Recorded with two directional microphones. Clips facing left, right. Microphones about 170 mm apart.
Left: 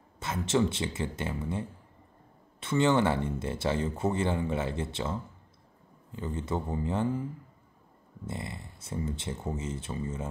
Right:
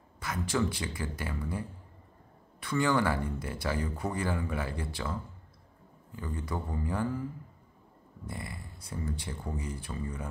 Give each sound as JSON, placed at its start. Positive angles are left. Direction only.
{"t": 0.2, "sound": "speech", "side_deg": 25}
{"t": 8.3, "sound": "speech", "side_deg": 25}